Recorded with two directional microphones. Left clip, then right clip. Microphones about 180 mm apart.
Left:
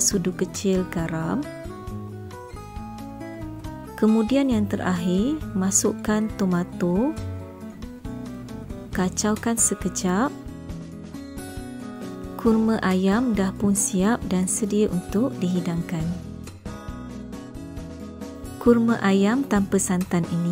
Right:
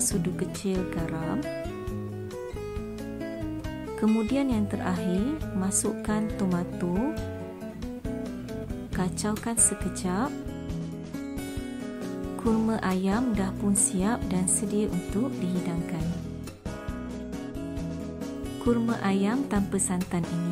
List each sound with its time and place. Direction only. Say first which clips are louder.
0.0 s speech: left 6 dB; 25° left (ahead or behind)
4.0 s speech: left 6 dB; 30° left (ahead or behind)
8.9 s speech: left 7 dB; 30° left (ahead or behind)
12.6 s speech: left 5 dB; 25° left (ahead or behind)
18.6 s speech: left 8 dB; 35° left (ahead or behind)